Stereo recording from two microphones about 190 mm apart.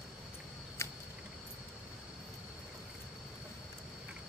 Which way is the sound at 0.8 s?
15° left (ahead or behind).